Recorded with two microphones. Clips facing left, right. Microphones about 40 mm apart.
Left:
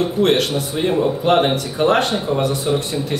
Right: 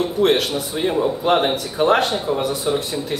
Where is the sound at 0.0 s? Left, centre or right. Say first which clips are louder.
Left 1 dB; centre.